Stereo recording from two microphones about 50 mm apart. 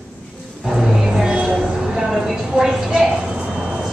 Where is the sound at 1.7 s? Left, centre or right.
Centre.